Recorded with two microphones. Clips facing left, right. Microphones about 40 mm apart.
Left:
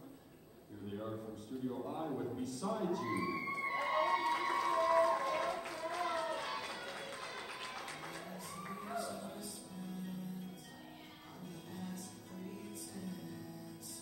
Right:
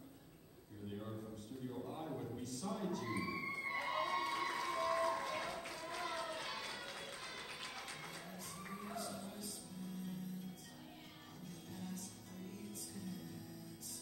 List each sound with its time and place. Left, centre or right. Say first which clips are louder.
0.8 s a man's voice: left 4 dB; centre
2.3 s a sound: left 5 dB; centre
9.0 s music: left 3 dB; centre
11.7 s music: left 1 dB; centre